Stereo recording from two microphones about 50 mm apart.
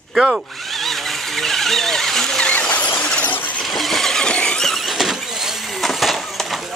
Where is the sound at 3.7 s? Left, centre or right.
Centre.